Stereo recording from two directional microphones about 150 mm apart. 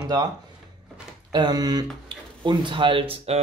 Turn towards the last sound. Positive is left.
turn(degrees=-35)  # may be behind; listen again after turning